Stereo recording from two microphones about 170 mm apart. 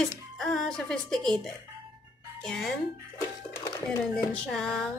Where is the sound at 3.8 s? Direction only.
5° left (ahead or behind).